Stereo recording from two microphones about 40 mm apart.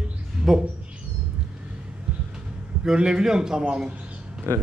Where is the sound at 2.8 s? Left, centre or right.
Right.